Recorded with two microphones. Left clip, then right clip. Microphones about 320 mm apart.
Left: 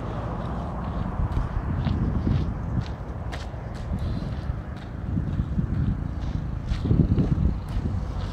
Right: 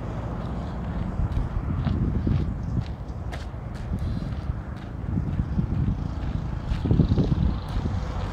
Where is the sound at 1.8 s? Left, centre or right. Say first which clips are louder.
Even; centre.